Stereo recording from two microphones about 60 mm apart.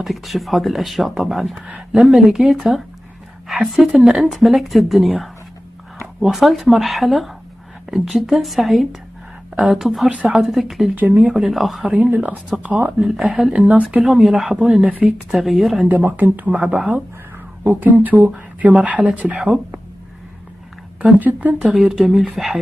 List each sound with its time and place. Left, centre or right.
0.0 s speech: centre
10.0 s speech: centre
10.5 s speech: centre
11.0 s speech: right
11.2 s speech: centre
11.8 s speech: right
13.0 s speech: centre
13.5 s speech: right
14.0 s speech: centre
14.9 s speech: right
15.3 s speech: centre
16.2 s speech: right
21.2 s speech: right
21.7 s speech: centre